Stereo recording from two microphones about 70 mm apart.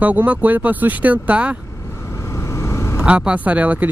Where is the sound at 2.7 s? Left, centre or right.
Left.